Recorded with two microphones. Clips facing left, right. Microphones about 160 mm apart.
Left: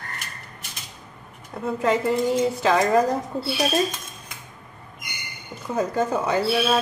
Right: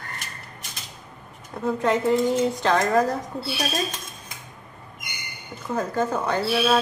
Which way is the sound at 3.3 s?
30° left (ahead or behind).